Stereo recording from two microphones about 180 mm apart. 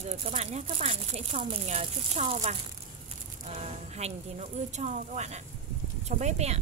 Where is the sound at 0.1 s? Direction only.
35° right (ahead or behind).